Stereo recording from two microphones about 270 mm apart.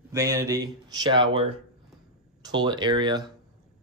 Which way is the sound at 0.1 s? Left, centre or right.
Centre.